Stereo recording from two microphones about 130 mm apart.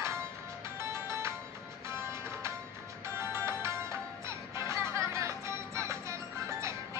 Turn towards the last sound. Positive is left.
turn(degrees=-20)  # may be behind; listen again after turning